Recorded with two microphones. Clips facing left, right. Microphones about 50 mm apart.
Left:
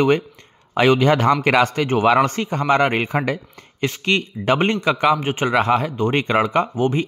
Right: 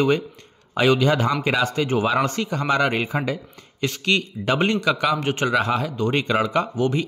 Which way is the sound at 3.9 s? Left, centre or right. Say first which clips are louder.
Left 1 dB; left.